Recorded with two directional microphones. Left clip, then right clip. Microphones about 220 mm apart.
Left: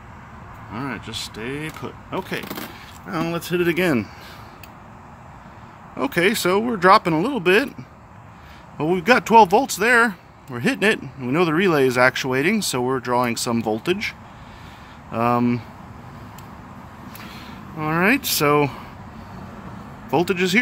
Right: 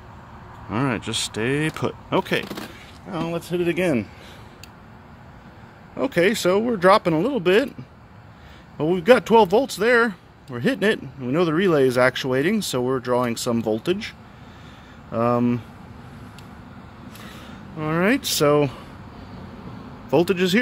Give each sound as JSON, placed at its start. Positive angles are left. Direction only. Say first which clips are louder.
{"t": 0.7, "sound": "speech", "louder": "right 5 dB", "side_deg": -50}
{"t": 3.1, "sound": "speech", "louder": "left 2 dB", "side_deg": 5}
{"t": 5.9, "sound": "speech", "louder": "even", "side_deg": -5}
{"t": 8.7, "sound": "speech", "louder": "right 1 dB", "side_deg": -5}
{"t": 15.1, "sound": "speech", "louder": "left 1 dB", "side_deg": -5}
{"t": 17.7, "sound": "speech", "louder": "left 2 dB", "side_deg": -5}
{"t": 20.1, "sound": "speech", "louder": "right 1 dB", "side_deg": -15}